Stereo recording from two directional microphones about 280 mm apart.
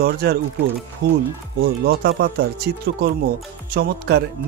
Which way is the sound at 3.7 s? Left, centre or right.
Right.